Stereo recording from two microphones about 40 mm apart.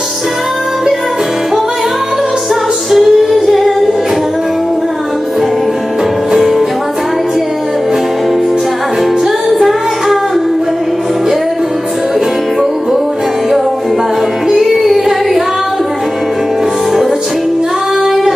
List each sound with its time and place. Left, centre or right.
2.9 s female singing: centre
9.5 s music: centre
14.7 s music: centre
18.0 s singing: centre